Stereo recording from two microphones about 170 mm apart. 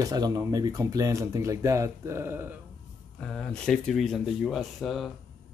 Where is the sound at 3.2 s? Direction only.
5° left (ahead or behind).